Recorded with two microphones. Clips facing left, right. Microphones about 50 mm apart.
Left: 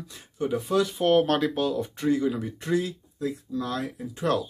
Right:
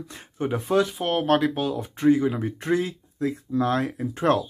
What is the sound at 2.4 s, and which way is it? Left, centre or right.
Speech, right.